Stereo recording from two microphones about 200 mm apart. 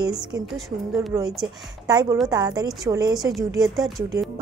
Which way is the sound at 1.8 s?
20° right (ahead or behind).